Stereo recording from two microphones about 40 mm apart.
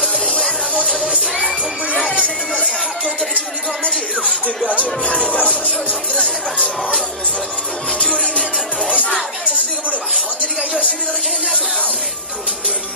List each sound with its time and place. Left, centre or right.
0.0 s music: left
1.0 s music: right
2.2 s music: left
6.1 s speech: left
8.0 s music: left